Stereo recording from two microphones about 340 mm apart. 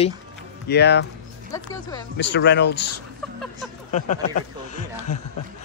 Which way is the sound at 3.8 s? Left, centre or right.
Left.